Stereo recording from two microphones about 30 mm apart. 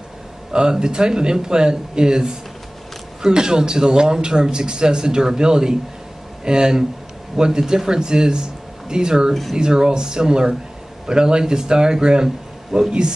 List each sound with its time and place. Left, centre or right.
0.5 s speech: right
12.7 s speech: centre